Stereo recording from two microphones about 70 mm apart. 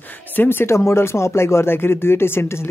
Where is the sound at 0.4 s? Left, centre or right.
Left.